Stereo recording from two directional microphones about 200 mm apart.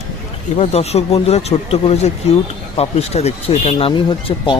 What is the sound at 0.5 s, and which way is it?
Speech, 30° left (ahead or behind).